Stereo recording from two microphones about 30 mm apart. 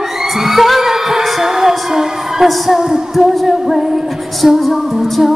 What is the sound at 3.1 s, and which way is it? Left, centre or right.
Music, centre.